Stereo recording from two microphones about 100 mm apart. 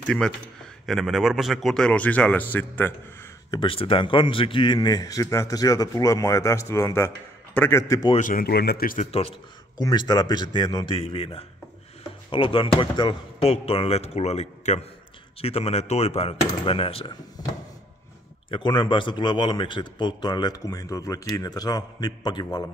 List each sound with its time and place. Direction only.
0.0 s speech: 10° left (ahead or behind)
3.5 s a man's voice: 65° left (ahead or behind); by 7.8 s 25° left (ahead or behind)
9.1 s speech: 90° left
9.8 s a man's voice: 45° left (ahead or behind)
10.9 s speech: 70° left (ahead or behind)
12.3 s speech: 60° left (ahead or behind)
13.4 s speech: 85° left; by 17.1 s 65° left (ahead or behind)
18.5 s a man's voice: 50° left (ahead or behind)